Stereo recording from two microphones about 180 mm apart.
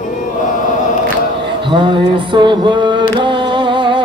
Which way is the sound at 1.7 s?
25° right (ahead or behind).